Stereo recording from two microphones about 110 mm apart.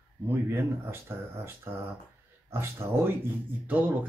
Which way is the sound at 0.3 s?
25° right (ahead or behind).